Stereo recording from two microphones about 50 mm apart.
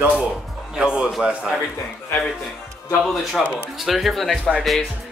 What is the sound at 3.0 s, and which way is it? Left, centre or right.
Speech, centre.